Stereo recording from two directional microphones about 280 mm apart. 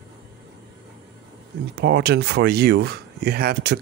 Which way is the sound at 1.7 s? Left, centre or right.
Right.